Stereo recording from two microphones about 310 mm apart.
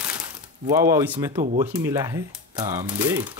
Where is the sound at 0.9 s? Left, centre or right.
Centre.